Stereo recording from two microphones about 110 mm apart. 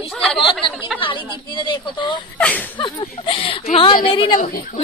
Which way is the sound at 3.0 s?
60° left (ahead or behind).